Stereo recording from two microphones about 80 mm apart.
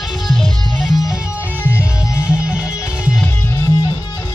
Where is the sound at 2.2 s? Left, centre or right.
Centre.